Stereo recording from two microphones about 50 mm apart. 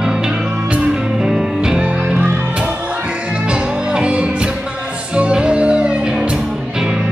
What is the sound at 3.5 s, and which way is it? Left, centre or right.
Music, right.